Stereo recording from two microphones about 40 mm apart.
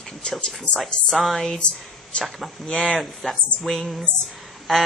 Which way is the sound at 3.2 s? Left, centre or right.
Centre.